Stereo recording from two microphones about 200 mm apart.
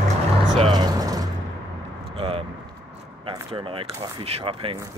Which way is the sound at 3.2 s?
25° right (ahead or behind).